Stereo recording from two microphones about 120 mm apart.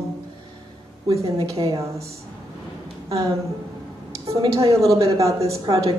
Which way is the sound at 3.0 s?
25° right (ahead or behind).